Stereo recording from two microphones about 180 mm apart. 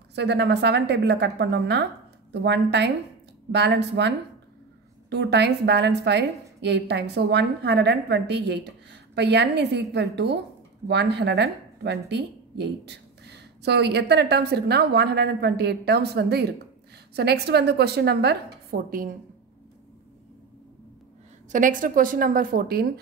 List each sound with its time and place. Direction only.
0.1 s speech: 70° right (ahead or behind)
5.1 s a woman's voice: 70° right (ahead or behind)
21.5 s a woman's voice: 45° right (ahead or behind)